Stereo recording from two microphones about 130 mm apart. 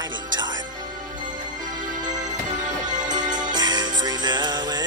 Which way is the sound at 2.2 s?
70° right (ahead or behind).